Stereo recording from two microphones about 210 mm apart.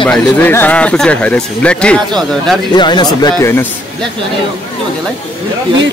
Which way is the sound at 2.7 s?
20° left (ahead or behind).